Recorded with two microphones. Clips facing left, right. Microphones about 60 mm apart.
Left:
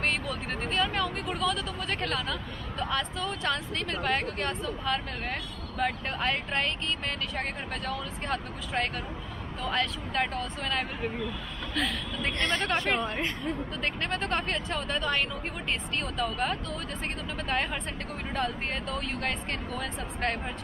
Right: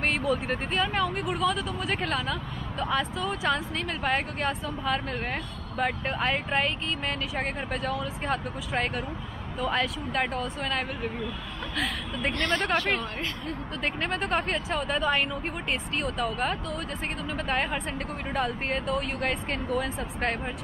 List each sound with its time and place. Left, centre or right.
0.0 s speech: centre
12.7 s a woman's voice: left
13.8 s speech: centre